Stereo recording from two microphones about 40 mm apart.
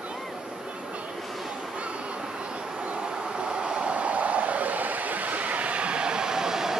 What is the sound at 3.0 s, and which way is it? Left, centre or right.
Vehicle, right.